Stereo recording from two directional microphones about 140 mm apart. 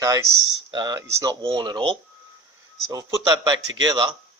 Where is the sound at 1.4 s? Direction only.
30° right (ahead or behind).